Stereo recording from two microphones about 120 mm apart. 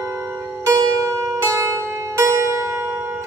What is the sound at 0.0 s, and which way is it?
Zither, 20° right (ahead or behind).